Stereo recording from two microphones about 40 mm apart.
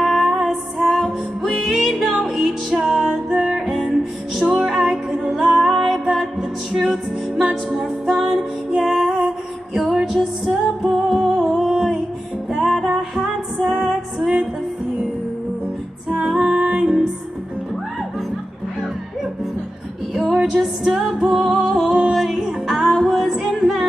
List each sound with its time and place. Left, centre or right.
0.0 s music: centre
4.4 s music: centre
16.1 s music: centre
16.3 s music: right
16.8 s music: centre
20.5 s music: centre
21.6 s music: centre
23.6 s music: centre